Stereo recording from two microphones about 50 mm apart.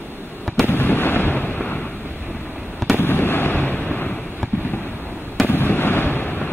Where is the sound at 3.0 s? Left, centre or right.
Left.